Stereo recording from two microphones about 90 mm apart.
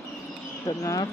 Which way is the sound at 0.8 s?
40° left (ahead or behind).